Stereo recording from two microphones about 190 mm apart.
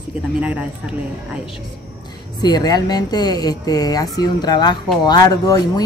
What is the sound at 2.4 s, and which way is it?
Speech, 20° left (ahead or behind).